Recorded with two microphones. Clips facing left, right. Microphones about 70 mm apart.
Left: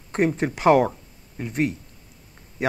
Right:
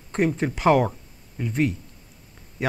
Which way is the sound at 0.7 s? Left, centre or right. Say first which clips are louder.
Left 2 dB; centre.